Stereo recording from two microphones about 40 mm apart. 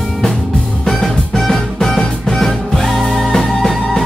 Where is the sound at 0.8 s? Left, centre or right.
Centre.